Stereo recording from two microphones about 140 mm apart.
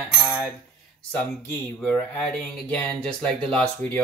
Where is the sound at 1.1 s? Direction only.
15° left (ahead or behind).